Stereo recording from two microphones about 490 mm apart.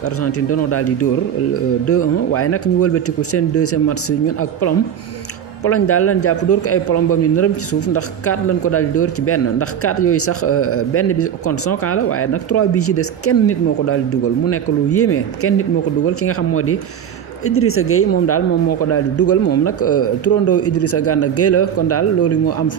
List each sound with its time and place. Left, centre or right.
0.2 s speech: left